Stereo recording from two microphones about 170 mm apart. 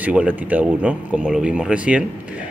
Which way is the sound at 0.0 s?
10° right (ahead or behind).